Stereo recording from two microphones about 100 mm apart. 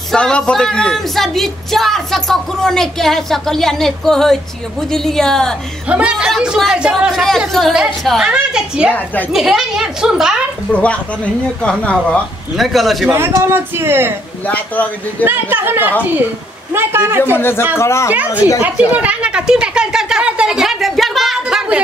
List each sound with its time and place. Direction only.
0.1 s speech: 10° left (ahead or behind)
5.9 s speech: 10° right (ahead or behind)
8.3 s speech: 10° right (ahead or behind)
10.7 s a man's voice: 10° left (ahead or behind)
12.5 s speech: centre (ahead or behind)
13.1 s speech: 25° right (ahead or behind)
14.4 s a man's voice: 15° left (ahead or behind)
15.2 s speech: 20° right (ahead or behind)
17.4 s speech: 25° left (ahead or behind)
18.9 s speech: 15° right (ahead or behind)